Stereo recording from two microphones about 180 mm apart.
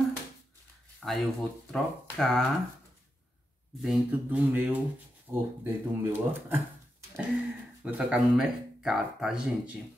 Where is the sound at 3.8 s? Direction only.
5° right (ahead or behind).